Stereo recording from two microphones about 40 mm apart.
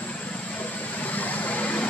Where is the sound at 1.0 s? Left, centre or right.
Left.